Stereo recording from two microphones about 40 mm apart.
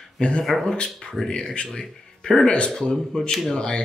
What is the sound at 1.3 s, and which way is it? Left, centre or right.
Speech, centre.